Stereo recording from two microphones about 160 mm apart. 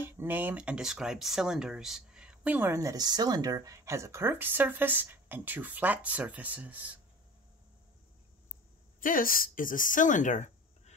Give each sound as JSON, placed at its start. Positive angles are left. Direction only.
{"t": 0.0, "sound": "speech", "side_deg": -15}
{"t": 9.0, "sound": "a woman's voice", "side_deg": 60}